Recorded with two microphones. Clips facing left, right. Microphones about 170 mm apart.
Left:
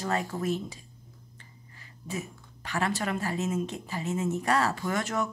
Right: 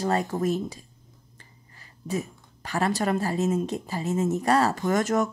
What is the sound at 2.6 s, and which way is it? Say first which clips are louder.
Speech: right 5 dB; 35° right (ahead or behind).